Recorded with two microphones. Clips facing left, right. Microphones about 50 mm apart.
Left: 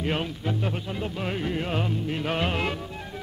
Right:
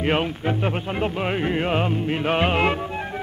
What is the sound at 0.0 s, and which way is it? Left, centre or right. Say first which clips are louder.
Music: right 6 dB; right.